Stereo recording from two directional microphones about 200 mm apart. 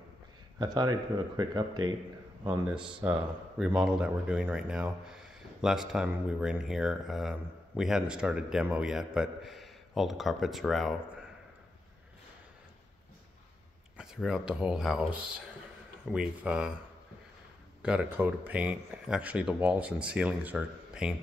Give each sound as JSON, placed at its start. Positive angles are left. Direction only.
{"t": 0.7, "sound": "speech", "side_deg": -20}
{"t": 2.7, "sound": "speech", "side_deg": -5}
{"t": 13.9, "sound": "speech", "side_deg": -5}
{"t": 17.8, "sound": "speech", "side_deg": -5}